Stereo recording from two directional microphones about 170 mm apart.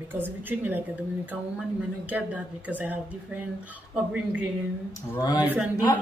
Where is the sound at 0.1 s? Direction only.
10° right (ahead or behind).